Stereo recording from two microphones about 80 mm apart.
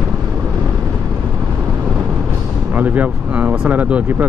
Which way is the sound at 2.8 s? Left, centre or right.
Centre.